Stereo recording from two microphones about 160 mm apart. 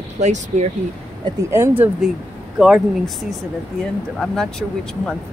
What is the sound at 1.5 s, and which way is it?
Speech, 15° right (ahead or behind).